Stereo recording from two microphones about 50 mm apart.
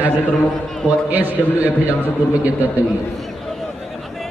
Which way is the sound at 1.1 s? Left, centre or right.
Right.